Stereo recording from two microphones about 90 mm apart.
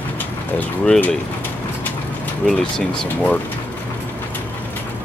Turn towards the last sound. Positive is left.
turn(degrees=5)  # may be behind; listen again after turning